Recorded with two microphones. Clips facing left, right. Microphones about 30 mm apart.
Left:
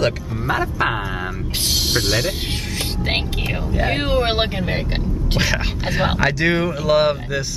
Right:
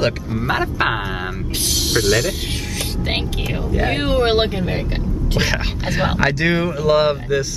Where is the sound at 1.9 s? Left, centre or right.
Centre.